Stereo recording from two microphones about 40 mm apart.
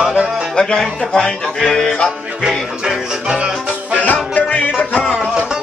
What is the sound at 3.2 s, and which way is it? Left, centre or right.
Music, right.